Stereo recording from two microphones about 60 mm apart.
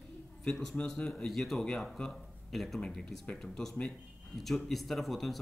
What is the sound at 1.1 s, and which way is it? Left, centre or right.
Speech, centre.